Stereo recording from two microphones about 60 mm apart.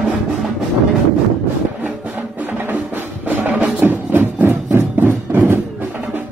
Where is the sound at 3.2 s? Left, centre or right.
Right.